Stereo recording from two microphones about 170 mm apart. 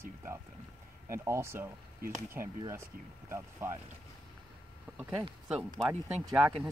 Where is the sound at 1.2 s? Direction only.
15° right (ahead or behind).